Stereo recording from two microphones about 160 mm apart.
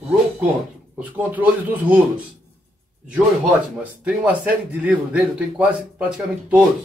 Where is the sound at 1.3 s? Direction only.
10° right (ahead or behind).